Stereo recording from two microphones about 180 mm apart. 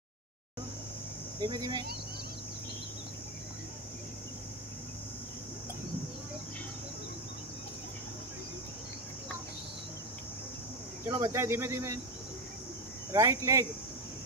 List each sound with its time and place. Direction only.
1.4 s speech: 25° right (ahead or behind)
11.1 s speech: 15° right (ahead or behind)
13.1 s speech: 20° right (ahead or behind)